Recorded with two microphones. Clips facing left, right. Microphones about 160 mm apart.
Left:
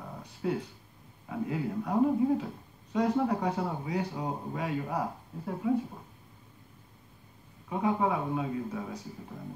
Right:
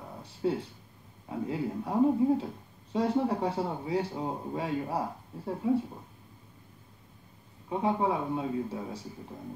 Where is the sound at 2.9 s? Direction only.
30° right (ahead or behind).